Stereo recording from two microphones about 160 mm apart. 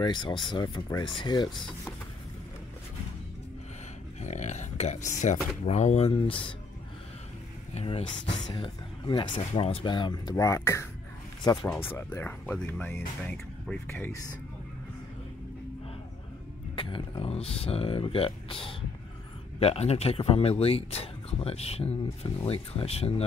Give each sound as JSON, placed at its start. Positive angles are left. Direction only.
{"t": 0.0, "sound": "speech", "side_deg": 30}
{"t": 4.2, "sound": "speech", "side_deg": 45}
{"t": 7.7, "sound": "speech", "side_deg": 35}
{"t": 16.7, "sound": "speech", "side_deg": 35}